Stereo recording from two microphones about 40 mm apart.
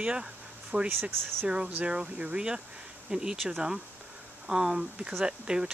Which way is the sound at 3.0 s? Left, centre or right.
Centre.